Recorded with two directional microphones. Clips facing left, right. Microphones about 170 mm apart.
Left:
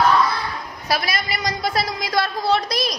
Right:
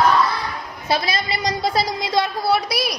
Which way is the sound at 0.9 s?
25° right (ahead or behind).